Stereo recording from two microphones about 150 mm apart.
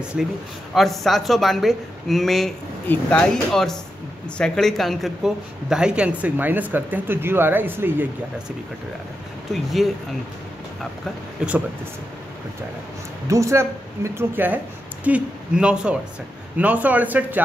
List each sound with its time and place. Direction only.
0.0 s speech: 5° right (ahead or behind)
9.5 s speech: centre (ahead or behind)
13.3 s speech: 20° right (ahead or behind)